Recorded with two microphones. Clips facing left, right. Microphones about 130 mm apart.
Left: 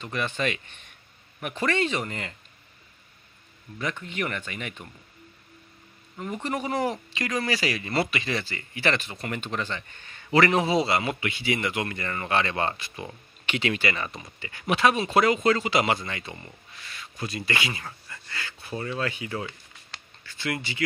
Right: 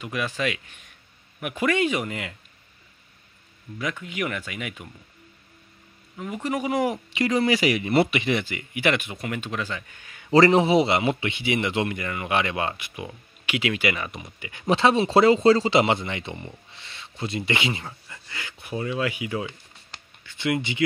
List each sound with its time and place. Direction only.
0.0 s a man's voice: 5° right (ahead or behind)
3.7 s a man's voice: 5° right (ahead or behind)
6.1 s a man's voice: 5° right (ahead or behind)
10.3 s a man's voice: 30° right (ahead or behind)